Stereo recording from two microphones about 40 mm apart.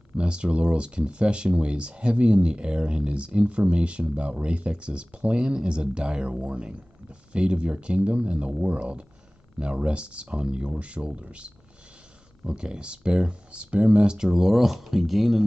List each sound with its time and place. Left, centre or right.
0.2 s speech: right; by 15.4 s centre